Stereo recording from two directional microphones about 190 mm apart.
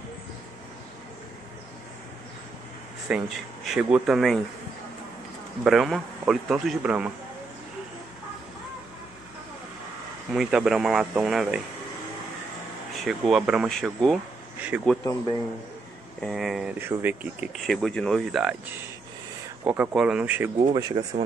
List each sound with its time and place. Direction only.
3.1 s speech: centre (ahead or behind)
5.6 s speech: centre (ahead or behind)
10.3 s speech: 5° right (ahead or behind)
13.0 s speech: centre (ahead or behind)
16.2 s speech: centre (ahead or behind)
19.6 s speech: 10° right (ahead or behind)
20.7 s speech: 20° right (ahead or behind)